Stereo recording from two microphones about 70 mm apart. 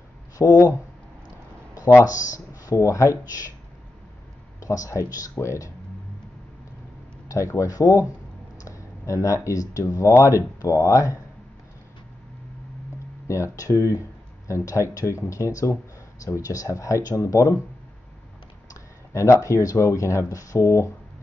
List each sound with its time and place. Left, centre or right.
0.4 s speech: left
2.0 s speech: left
4.6 s speech: left
7.2 s speech: left
13.3 s speech: left
18.7 s speech: left